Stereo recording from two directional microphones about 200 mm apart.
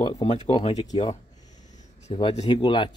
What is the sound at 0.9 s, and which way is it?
Speech, 20° left (ahead or behind).